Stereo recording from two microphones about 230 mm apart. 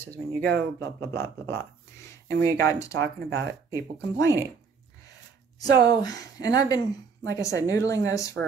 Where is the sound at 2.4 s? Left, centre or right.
Right.